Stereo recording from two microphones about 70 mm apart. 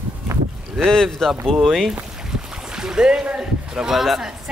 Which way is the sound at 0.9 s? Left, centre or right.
Centre.